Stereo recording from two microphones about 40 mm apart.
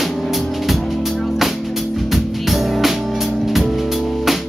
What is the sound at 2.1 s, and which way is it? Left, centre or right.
Music, centre.